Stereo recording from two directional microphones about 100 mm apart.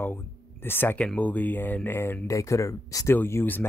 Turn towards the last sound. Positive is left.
turn(degrees=20)  # may be behind; listen again after turning